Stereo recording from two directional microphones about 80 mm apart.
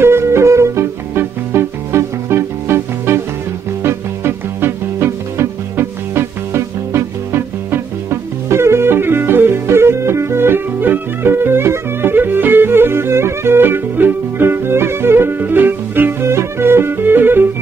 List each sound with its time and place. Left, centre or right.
0.0 s music: right